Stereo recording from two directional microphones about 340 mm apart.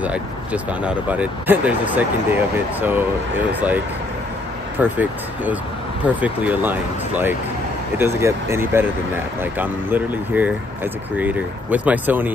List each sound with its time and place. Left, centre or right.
0.0 s speech: centre